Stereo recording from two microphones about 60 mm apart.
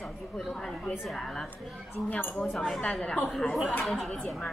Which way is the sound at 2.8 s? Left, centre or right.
Centre.